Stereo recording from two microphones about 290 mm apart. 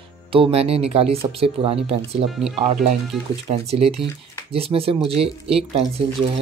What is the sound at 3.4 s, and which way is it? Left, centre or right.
Speech, right.